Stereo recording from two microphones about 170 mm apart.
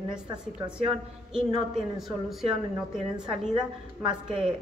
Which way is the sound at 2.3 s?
Centre (ahead or behind).